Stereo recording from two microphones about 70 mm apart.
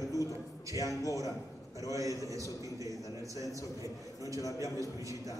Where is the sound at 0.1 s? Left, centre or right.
Left.